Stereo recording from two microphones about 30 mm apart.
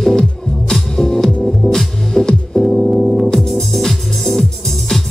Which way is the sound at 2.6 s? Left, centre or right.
Centre.